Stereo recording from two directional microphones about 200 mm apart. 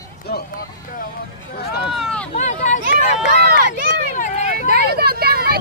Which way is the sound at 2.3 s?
35° left (ahead or behind).